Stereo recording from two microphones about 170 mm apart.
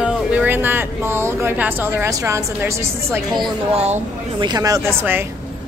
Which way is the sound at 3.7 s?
40° right (ahead or behind).